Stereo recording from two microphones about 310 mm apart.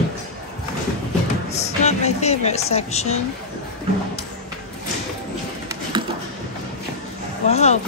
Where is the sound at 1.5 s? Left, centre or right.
Left.